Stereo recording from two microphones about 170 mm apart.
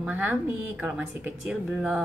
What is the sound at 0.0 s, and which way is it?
Speech, 10° right (ahead or behind).